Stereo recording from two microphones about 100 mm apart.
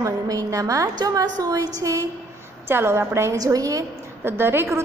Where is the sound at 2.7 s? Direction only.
25° right (ahead or behind).